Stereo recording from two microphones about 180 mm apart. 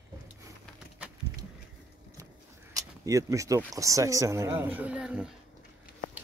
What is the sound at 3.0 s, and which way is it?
Speech, 20° right (ahead or behind).